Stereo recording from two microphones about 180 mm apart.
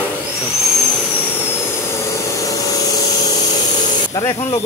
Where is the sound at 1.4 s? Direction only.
15° left (ahead or behind).